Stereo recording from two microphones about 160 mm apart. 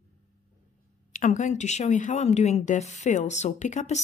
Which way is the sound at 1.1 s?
50° left (ahead or behind).